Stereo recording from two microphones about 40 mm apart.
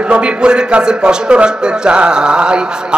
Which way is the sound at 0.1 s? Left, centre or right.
Right.